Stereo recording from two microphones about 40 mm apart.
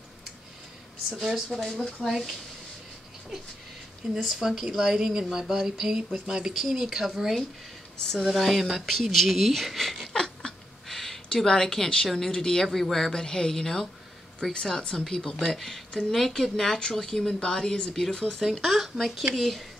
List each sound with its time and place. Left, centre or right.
1.1 s speech: centre
1.7 s a woman's voice: centre
2.0 s speech: centre
4.0 s speech: centre
6.5 s speech: centre
10.1 s a sound: centre
11.4 s a woman's voice: centre
15.5 s a woman's voice: centre
18.4 s speech: centre